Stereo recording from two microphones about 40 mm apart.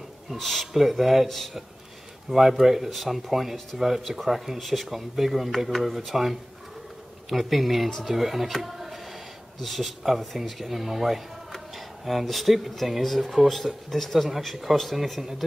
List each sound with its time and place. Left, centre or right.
0.4 s speech: centre